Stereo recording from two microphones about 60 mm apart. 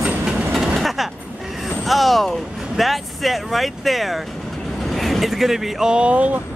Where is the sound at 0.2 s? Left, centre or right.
Centre.